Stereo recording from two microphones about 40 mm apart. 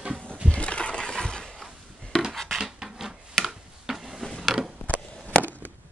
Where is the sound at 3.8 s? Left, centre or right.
Centre.